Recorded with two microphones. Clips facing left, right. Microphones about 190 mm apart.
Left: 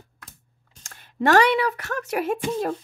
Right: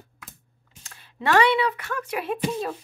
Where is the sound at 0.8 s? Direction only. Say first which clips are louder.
Left 4 dB; 45° left (ahead or behind).